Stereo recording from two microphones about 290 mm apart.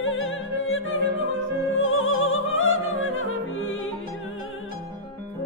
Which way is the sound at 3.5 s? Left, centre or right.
Left.